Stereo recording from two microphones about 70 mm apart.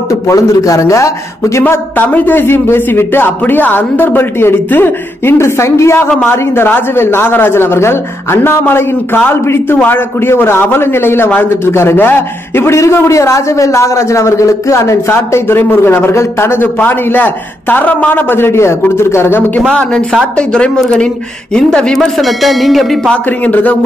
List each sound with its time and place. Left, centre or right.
0.1 s a man's voice: left
1.7 s a man's voice: left
16.7 s a man's voice: left
19.7 s speech: centre
23.2 s speech: left